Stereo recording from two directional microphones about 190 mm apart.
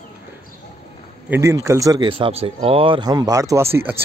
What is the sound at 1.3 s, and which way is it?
Speech, 15° right (ahead or behind).